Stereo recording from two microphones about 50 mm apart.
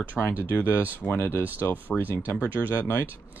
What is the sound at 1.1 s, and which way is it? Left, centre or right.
Speech, left.